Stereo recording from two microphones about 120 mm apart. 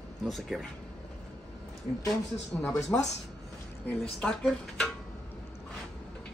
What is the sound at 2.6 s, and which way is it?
Speech, 20° left (ahead or behind).